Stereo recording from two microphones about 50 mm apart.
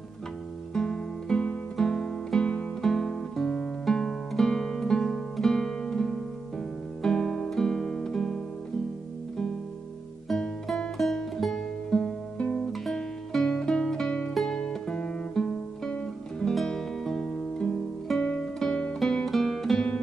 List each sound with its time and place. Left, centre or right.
0.7 s music: centre
10.2 s music: centre
12.4 s music: left
12.8 s music: centre
14.6 s music: centre
18.4 s guitar: centre
18.9 s music: centre